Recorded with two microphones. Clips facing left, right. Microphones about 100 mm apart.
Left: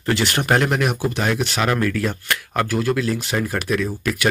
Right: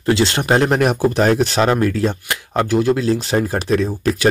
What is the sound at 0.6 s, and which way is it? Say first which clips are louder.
Speech: right 5 dB; 35° right (ahead or behind).